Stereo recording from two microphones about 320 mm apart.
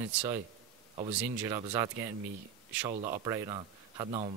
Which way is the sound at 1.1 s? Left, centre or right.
Centre.